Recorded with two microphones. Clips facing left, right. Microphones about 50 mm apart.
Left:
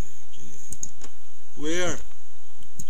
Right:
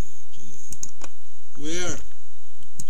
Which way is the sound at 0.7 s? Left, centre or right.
Right.